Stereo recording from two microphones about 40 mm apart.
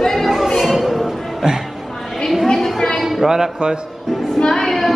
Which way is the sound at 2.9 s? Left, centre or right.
Centre.